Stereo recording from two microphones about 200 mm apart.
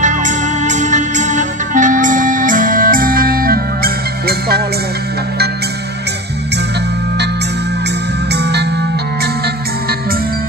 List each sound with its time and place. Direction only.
0.0 s music: 40° right (ahead or behind)
8.3 s music: 55° right (ahead or behind)